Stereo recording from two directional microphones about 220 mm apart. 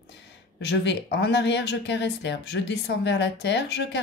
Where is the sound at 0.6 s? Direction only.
50° left (ahead or behind).